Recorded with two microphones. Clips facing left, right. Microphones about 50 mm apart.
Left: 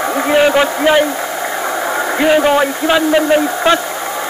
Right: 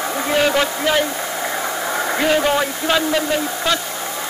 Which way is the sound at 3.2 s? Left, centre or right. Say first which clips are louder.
Left 8 dB; left.